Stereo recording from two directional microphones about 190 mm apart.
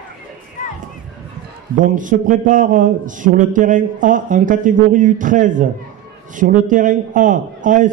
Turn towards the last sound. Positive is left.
turn(degrees=-45)  # may be behind; listen again after turning